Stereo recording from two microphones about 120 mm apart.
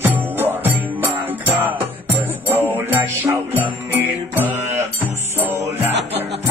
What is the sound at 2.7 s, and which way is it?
Music, 20° right (ahead or behind).